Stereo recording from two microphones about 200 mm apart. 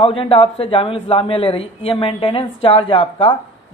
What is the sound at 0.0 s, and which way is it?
Speech, 30° left (ahead or behind).